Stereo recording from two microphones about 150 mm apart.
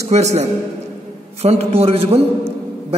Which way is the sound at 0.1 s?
50° right (ahead or behind).